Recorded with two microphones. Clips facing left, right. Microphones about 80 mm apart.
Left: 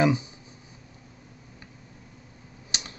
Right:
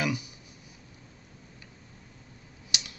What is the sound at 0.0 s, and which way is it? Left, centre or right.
Speech, left.